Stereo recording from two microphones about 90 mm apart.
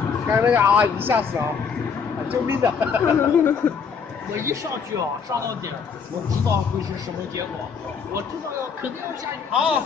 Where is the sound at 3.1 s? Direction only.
30° left (ahead or behind).